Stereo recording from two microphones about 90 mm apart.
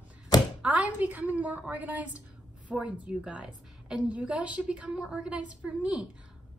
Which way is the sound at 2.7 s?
5° right (ahead or behind).